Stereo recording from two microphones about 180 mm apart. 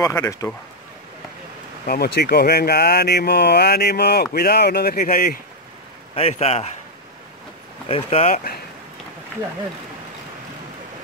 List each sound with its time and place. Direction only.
0.0 s speech: 15° left (ahead or behind)
1.9 s speech: 60° left (ahead or behind)
6.1 s a man's voice: 35° left (ahead or behind)
7.9 s a man's voice: 35° left (ahead or behind)